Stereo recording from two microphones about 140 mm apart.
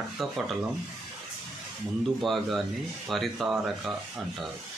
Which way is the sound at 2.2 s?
Centre (ahead or behind).